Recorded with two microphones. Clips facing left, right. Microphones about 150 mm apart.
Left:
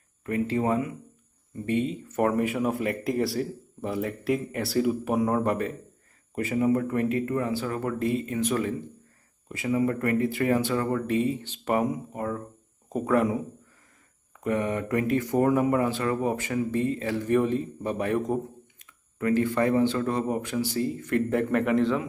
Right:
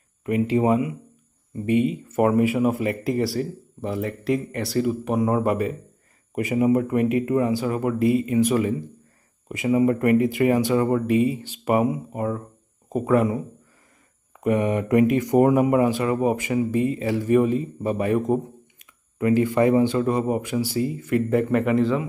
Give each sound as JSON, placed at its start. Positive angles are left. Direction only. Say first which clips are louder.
{"t": 0.2, "sound": "speech", "louder": "right 5 dB", "side_deg": -15}
{"t": 14.4, "sound": "speech", "louder": "right 5 dB", "side_deg": -15}